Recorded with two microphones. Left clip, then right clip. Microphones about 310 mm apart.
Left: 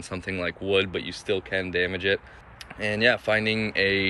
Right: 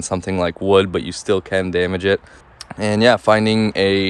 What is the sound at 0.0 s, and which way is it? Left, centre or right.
Speech, centre.